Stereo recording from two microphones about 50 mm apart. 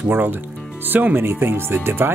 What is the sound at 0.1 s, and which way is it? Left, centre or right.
Speech, right.